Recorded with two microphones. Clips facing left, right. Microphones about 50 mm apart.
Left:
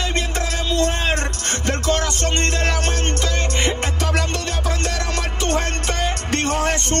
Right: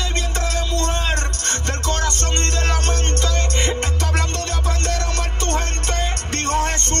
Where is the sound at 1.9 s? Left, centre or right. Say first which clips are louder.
Left 2 dB; left.